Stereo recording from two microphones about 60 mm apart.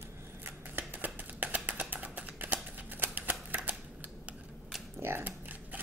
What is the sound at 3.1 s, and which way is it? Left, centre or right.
Typewriter, right.